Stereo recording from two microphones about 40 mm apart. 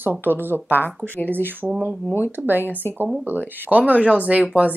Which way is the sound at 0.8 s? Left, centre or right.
Left.